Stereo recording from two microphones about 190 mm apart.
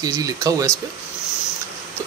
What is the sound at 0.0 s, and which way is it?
Speech, 20° right (ahead or behind).